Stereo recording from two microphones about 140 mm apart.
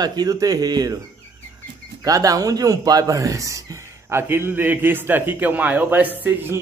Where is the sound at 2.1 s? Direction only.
25° right (ahead or behind).